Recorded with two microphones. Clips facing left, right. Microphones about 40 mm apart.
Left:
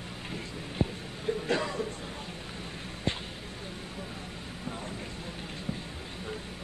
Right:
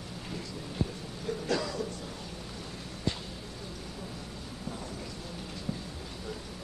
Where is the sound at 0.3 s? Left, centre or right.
Left.